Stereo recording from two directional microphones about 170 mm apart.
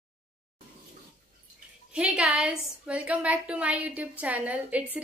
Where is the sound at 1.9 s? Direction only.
5° right (ahead or behind).